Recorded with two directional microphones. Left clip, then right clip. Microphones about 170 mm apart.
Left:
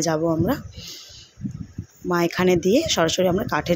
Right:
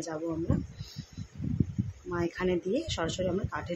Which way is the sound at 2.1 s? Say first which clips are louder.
Left 11 dB; 50° left (ahead or behind).